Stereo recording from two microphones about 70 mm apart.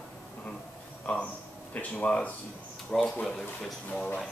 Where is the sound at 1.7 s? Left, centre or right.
Left.